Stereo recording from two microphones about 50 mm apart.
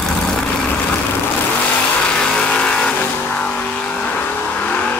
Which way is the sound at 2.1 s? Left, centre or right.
Centre.